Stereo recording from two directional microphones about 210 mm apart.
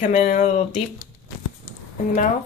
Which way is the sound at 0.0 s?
35° left (ahead or behind).